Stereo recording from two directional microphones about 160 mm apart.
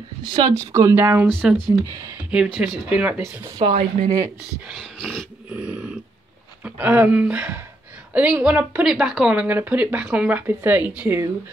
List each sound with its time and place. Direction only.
0.2 s speech: 30° right (ahead or behind)
0.7 s speech: 15° right (ahead or behind)
1.4 s dog: 5° right (ahead or behind)
2.3 s speech: 5° right (ahead or behind)
3.5 s speech: 35° right (ahead or behind)
4.6 s dog: 5° right (ahead or behind)
6.6 s speech: 10° right (ahead or behind)